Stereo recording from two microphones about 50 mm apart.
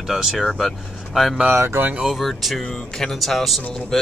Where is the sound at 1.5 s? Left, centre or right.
Right.